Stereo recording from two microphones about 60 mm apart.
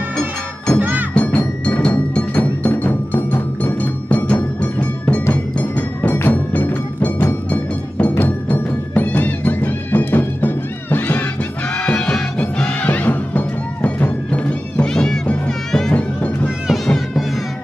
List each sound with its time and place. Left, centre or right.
0.7 s music: right
1.1 s music: left
7.4 s music: left
8.1 s music: left
11.7 s music: centre
14.8 s music: centre
15.9 s music: left
16.7 s music: centre